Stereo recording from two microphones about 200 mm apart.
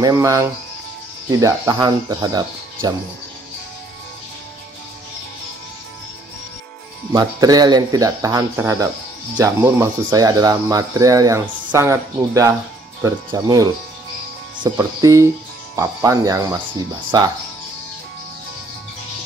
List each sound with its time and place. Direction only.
0.0 s speech: 15° right (ahead or behind)
7.1 s speech: 20° right (ahead or behind)